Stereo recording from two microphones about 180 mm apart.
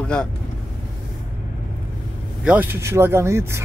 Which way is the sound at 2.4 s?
10° right (ahead or behind).